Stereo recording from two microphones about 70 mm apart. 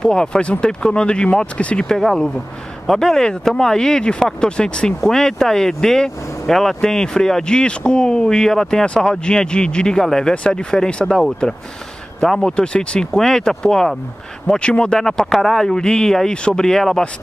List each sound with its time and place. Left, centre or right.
0.0 s speech: centre